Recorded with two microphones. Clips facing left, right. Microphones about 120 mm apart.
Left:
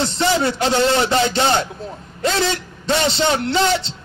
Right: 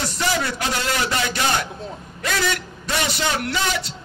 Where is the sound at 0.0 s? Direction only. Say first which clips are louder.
Left 5 dB; 25° left (ahead or behind).